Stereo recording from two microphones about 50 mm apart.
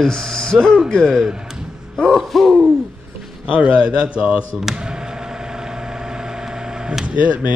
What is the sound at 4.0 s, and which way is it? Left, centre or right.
Speech, right.